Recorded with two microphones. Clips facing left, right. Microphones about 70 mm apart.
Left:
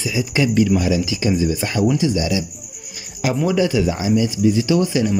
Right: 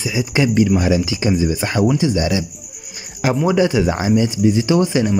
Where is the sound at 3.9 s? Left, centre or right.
Right.